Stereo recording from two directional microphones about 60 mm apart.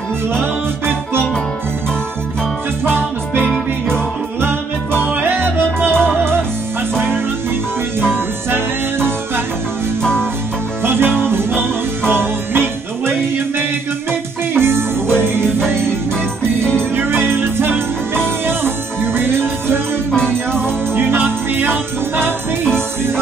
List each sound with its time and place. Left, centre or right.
0.3 s music: right
3.3 s music: centre
5.1 s music: right
8.0 s music: right
10.8 s music: right
14.5 s music: right
16.9 s music: right
20.1 s music: centre
20.9 s music: right